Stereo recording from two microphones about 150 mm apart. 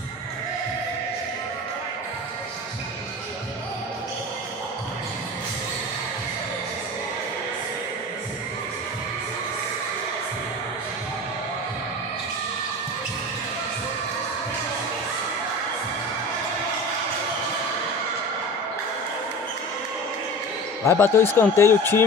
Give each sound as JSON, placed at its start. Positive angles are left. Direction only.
{"t": 20.8, "sound": "speech", "side_deg": 15}